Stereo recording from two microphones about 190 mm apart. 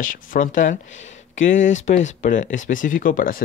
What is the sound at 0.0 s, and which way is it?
Speech, 45° left (ahead or behind).